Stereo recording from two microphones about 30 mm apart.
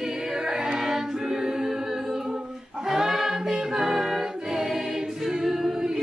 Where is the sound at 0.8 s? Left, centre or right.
Centre.